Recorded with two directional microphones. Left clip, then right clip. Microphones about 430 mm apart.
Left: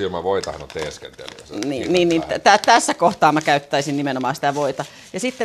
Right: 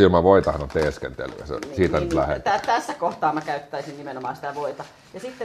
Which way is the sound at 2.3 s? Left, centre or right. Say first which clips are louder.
Left 8 dB; left.